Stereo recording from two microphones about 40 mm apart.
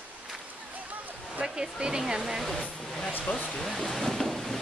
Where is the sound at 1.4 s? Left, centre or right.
Centre.